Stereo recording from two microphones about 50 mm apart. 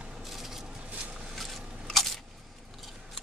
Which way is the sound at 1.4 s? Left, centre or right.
Centre.